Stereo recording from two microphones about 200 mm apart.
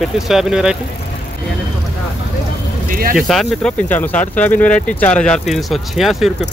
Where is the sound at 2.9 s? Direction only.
45° right (ahead or behind).